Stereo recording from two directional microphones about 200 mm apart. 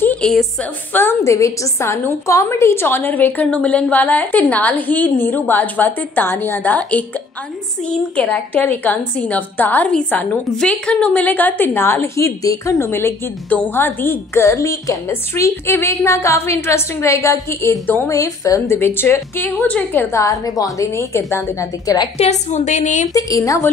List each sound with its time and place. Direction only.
0.0 s a sound: 5° left (ahead or behind)
0.9 s a woman's voice: 15° left (ahead or behind)
22.2 s a woman's voice: 35° left (ahead or behind)
23.1 s a woman's voice: 15° left (ahead or behind)